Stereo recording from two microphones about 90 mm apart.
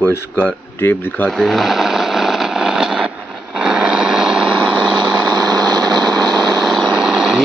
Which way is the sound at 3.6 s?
10° right (ahead or behind).